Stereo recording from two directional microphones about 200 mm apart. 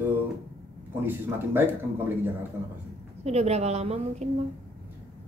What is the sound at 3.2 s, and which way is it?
A woman's voice, 35° right (ahead or behind).